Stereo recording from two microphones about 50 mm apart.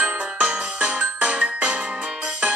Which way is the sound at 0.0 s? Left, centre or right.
Right.